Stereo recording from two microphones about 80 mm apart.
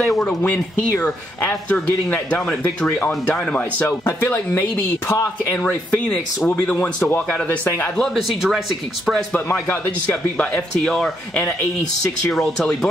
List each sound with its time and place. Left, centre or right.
0.4 s a man's voice: centre
4.3 s speech: left
5.6 s speech: centre
7.0 s a man's voice: left
8.0 s speech: centre
9.3 s a man's voice: left
10.3 s speech: centre